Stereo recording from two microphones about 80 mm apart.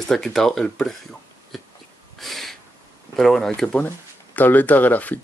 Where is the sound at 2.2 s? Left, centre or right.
Centre.